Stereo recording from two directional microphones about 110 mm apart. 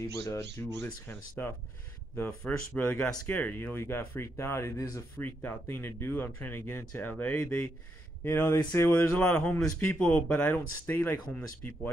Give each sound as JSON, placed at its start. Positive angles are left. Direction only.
{"t": 0.3, "sound": "speech", "side_deg": 20}
{"t": 2.7, "sound": "speech", "side_deg": 15}